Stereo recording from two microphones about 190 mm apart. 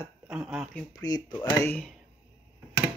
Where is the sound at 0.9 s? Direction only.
20° left (ahead or behind).